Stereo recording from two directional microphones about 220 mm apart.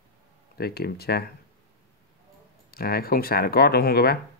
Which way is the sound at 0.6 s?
45° left (ahead or behind).